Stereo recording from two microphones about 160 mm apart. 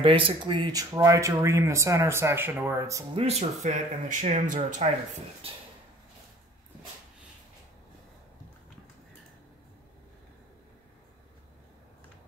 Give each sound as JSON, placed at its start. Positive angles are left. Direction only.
{"t": 0.0, "sound": "speech", "side_deg": -35}
{"t": 3.2, "sound": "speech", "side_deg": -40}